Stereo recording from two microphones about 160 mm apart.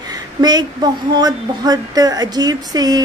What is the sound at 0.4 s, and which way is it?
Speech, 25° right (ahead or behind).